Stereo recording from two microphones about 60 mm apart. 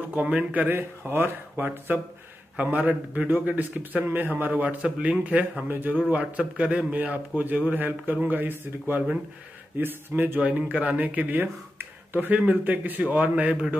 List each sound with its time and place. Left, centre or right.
0.2 s a man's voice: centre; by 2.0 s right
2.5 s a man's voice: right
4.5 s a man's voice: right
6.0 s a man's voice: right
10.4 s speech: right
11.4 s a sound: right
12.3 s speech: right